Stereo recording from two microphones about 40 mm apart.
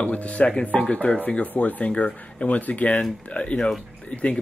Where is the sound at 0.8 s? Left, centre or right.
Left.